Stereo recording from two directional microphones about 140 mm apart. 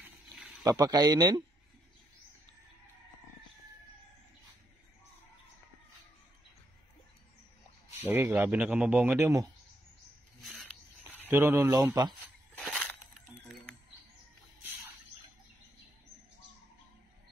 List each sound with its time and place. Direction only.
0.7 s speech: 25° right (ahead or behind)
8.0 s a man's voice: 15° right (ahead or behind)
10.4 s a sound: centre (ahead or behind)
11.2 s speech: 15° right (ahead or behind)
12.5 s crushing: 5° left (ahead or behind)